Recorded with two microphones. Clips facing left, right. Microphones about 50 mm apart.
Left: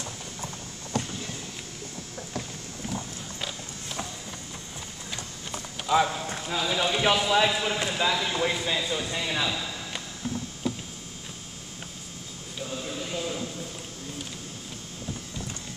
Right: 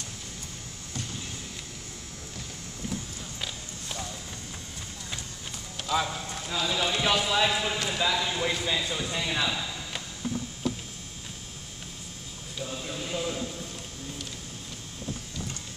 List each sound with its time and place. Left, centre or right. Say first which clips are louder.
0.9 s vehicle: left 8 dB; left
3.3 s creak: left 1 dB; centre
5.9 s speech: left 5 dB; centre
12.5 s a sound: left 1 dB; centre